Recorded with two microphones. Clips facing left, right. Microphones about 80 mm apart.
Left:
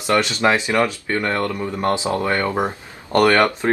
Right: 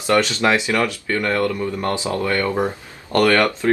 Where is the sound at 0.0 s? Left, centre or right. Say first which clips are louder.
Even; centre.